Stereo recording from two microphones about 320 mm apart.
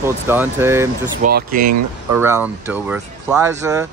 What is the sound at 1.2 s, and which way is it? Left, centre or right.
Speech, right.